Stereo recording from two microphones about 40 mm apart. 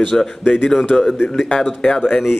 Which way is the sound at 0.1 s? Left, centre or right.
Centre.